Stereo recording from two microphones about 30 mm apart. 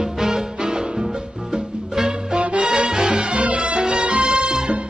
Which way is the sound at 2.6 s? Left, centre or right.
Right.